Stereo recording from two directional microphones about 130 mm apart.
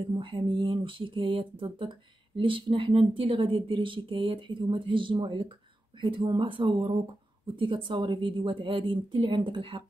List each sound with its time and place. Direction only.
0.1 s speech: 40° right (ahead or behind)